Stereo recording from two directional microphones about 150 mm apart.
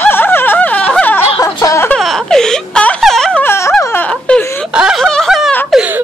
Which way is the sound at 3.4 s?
15° left (ahead or behind).